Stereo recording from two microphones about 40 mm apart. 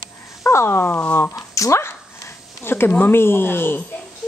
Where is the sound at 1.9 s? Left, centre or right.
Left.